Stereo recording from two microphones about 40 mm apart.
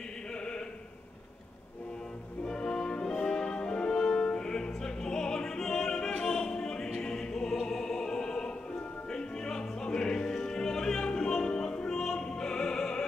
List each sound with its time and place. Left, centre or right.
2.4 s music: centre
9.1 s opera: centre